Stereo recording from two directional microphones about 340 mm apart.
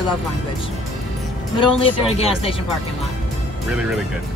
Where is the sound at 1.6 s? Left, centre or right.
Centre.